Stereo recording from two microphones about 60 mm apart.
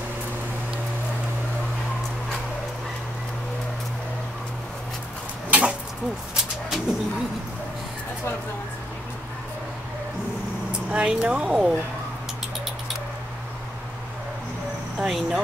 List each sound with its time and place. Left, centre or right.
5.5 s a sound: centre
6.3 s bird: centre
10.9 s speech: centre
15.0 s speech: centre